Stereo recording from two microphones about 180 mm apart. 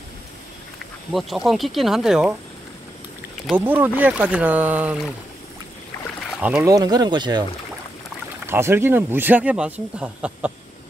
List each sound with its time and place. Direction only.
1.1 s speech: centre (ahead or behind)
3.4 s speech: 10° right (ahead or behind)
6.4 s speech: 15° right (ahead or behind)
8.5 s speech: 15° right (ahead or behind)